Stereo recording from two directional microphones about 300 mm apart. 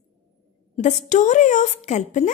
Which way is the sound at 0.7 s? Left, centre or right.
Left.